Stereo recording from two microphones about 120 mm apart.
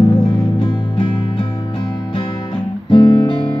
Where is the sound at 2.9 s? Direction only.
35° left (ahead or behind).